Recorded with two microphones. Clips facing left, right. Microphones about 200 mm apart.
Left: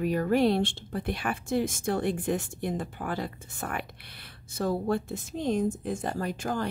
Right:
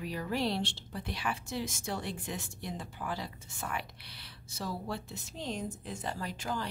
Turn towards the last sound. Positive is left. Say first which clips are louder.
# left 7 dB
turn(degrees=50)  # may be behind; listen again after turning